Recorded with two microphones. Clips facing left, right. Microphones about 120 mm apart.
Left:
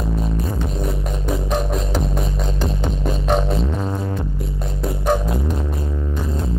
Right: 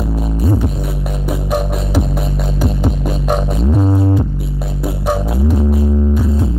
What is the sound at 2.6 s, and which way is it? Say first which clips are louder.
Music: right 6 dB; 10° right (ahead or behind).